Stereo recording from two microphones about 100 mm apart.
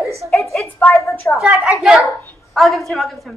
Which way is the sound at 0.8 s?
15° left (ahead or behind).